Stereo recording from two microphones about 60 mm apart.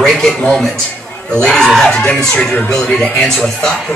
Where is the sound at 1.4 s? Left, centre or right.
Centre.